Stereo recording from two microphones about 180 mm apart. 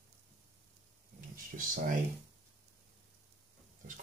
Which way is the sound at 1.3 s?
50° right (ahead or behind).